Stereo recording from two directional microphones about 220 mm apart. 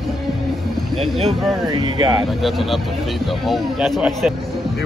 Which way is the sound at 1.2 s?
20° right (ahead or behind).